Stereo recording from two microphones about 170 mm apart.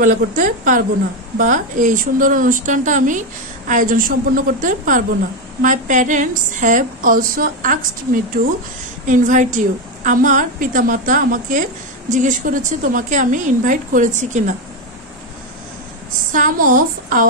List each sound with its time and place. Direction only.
0.0 s a woman's voice: 50° right (ahead or behind)
16.3 s a woman's voice: 55° right (ahead or behind)